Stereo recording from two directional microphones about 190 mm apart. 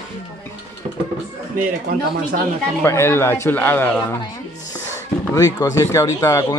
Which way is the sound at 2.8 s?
15° left (ahead or behind).